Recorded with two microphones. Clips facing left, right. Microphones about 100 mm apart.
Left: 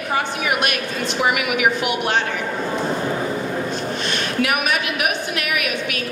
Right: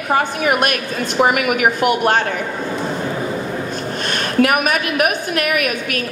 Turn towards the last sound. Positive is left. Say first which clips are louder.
# right 4 dB
turn(degrees=-45)  # may be behind; listen again after turning